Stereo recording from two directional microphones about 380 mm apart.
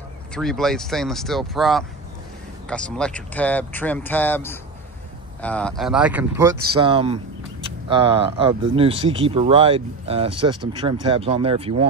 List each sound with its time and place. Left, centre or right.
0.3 s speech: centre